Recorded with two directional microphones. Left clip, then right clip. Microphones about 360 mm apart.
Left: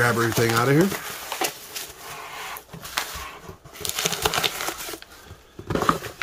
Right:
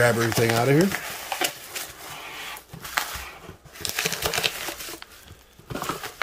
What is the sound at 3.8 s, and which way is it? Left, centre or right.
Typing, centre.